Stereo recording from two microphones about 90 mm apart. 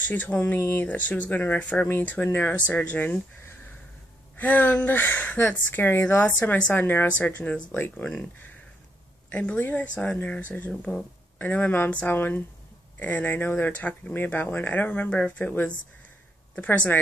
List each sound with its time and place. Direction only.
0.1 s speech: 15° left (ahead or behind)
4.4 s speech: 20° left (ahead or behind)